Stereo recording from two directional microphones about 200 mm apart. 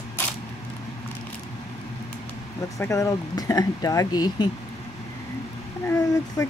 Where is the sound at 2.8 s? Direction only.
15° left (ahead or behind).